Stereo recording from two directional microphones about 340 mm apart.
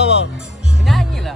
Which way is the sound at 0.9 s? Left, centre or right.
Centre.